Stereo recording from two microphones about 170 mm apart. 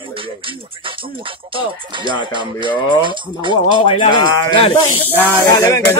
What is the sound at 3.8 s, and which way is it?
Speech, 30° left (ahead or behind).